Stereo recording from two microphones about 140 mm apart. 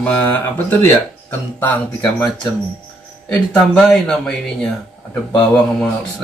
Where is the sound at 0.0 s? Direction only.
10° left (ahead or behind).